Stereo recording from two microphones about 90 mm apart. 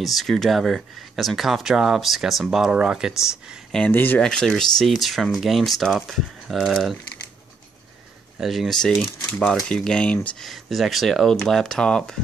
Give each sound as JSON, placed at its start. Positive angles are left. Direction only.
{"t": 0.0, "sound": "speech", "side_deg": 0}
{"t": 3.9, "sound": "speech", "side_deg": 25}
{"t": 4.2, "sound": "speech", "side_deg": 10}
{"t": 8.4, "sound": "speech", "side_deg": 0}